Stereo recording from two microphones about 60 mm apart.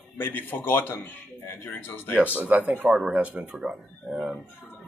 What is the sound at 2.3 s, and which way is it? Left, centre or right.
Speech, right.